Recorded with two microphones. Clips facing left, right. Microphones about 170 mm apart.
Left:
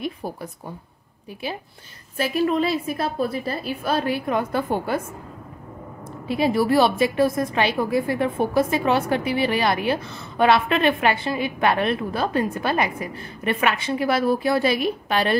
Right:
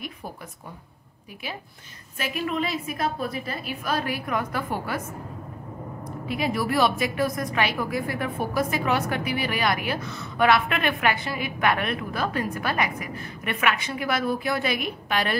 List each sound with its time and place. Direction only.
0.0 s a woman's voice: 30° left (ahead or behind)
2.1 s a woman's voice: 35° left (ahead or behind)
6.2 s a woman's voice: 30° left (ahead or behind)